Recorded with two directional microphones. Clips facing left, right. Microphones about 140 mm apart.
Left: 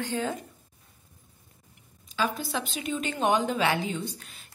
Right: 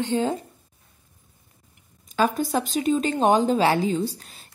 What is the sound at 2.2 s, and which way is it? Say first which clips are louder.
Speech: right 7 dB; 45° right (ahead or behind).